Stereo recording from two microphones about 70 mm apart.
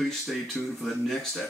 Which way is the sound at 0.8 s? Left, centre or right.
Centre.